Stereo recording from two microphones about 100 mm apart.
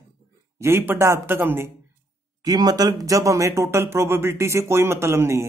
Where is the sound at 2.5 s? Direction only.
40° right (ahead or behind).